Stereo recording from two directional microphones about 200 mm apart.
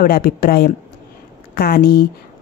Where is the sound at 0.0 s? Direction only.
45° left (ahead or behind).